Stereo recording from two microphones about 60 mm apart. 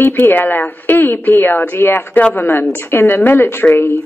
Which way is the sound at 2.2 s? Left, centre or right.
Left.